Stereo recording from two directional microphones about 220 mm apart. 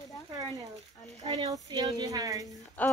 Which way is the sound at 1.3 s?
15° right (ahead or behind).